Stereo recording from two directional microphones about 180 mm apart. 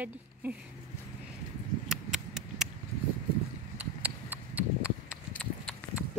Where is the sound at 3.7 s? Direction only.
10° right (ahead or behind).